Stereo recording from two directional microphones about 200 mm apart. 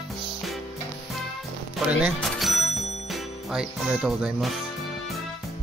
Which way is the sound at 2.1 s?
Centre (ahead or behind).